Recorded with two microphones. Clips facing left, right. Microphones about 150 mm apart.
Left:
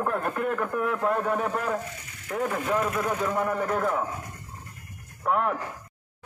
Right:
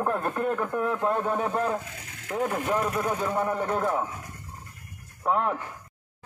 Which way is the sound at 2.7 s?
10° right (ahead or behind).